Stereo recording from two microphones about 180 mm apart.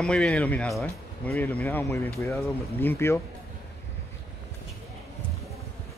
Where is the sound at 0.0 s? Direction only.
5° left (ahead or behind).